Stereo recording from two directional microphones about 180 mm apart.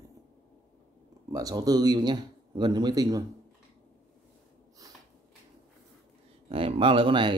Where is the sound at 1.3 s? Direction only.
20° right (ahead or behind).